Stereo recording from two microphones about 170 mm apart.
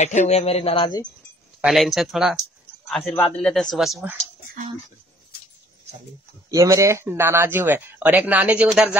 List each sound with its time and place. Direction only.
0.0 s speech: 45° left (ahead or behind)
1.6 s speech: centre (ahead or behind)
6.5 s speech: 20° right (ahead or behind)